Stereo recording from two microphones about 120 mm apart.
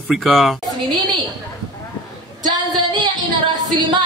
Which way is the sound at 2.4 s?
40° right (ahead or behind).